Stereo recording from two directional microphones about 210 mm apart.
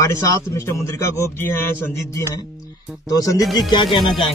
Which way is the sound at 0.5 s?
15° left (ahead or behind).